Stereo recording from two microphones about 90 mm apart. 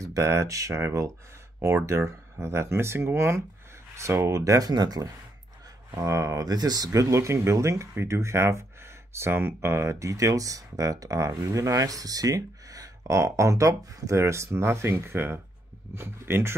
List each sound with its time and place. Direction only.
0.0 s speech: 35° right (ahead or behind)